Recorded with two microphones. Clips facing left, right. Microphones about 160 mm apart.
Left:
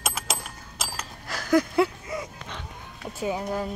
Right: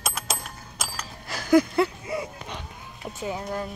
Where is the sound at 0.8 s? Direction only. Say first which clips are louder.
Even; centre (ahead or behind).